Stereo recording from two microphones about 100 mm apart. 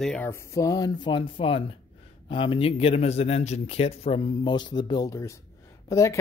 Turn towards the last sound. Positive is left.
turn(degrees=30)  # may be behind; listen again after turning